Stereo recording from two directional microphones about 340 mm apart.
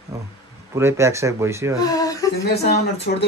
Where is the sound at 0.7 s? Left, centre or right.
Centre.